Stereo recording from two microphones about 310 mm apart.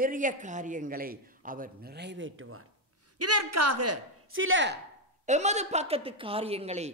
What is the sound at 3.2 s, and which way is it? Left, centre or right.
Speech, right.